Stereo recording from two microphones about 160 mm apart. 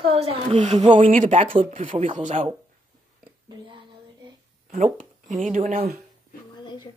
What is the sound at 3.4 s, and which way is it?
Speech, 30° right (ahead or behind).